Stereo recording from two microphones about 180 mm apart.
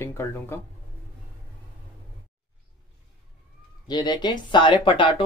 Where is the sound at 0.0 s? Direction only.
15° left (ahead or behind).